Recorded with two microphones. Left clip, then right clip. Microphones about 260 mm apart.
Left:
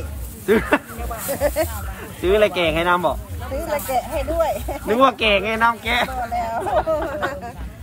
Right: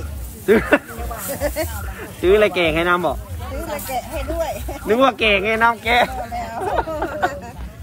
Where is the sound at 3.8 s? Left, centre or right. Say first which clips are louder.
Left 3 dB; left.